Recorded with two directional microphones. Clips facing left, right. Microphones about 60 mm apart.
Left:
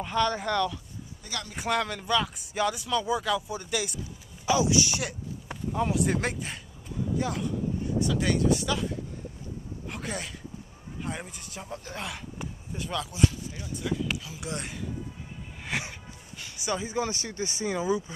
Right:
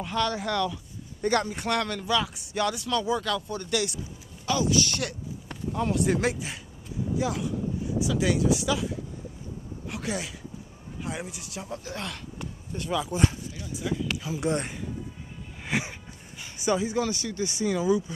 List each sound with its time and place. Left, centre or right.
0.0 s speech: centre
4.5 s speech: centre
14.4 s speech: right
15.6 s a sound: centre
16.7 s speech: centre
17.0 s speech: left
17.7 s speech: left